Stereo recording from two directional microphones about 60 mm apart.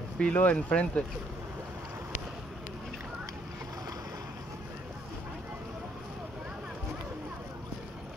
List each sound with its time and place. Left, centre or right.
0.2 s speech: left